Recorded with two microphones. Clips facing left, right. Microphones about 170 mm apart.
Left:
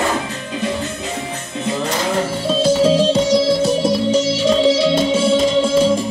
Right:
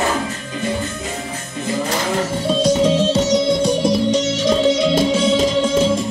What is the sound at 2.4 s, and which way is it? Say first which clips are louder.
Music: left 1 dB; 5° left (ahead or behind).